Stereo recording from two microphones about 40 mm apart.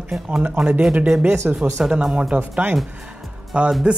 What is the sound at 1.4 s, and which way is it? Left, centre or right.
Speech, right.